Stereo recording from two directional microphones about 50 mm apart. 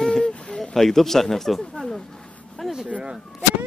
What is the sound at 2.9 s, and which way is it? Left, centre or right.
Speech, centre.